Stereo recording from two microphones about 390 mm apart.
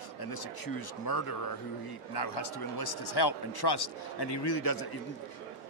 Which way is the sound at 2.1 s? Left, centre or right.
Left.